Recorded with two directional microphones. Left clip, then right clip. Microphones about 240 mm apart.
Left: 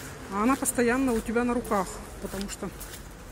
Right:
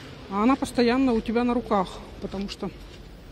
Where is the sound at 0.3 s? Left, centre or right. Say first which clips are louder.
Right 3 dB; centre.